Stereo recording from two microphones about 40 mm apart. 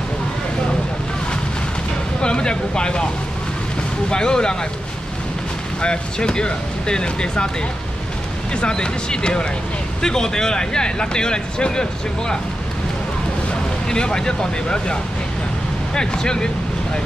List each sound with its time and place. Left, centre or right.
2.2 s speech: left
4.1 s speech: centre
5.8 s speech: left
8.5 s speech: left
13.8 s speech: centre